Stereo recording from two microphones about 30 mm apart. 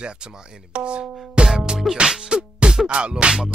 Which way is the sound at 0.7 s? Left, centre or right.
Right.